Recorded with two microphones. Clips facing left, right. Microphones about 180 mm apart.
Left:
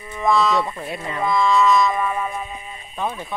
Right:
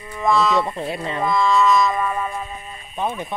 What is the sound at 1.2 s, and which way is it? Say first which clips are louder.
Music: even; centre (ahead or behind).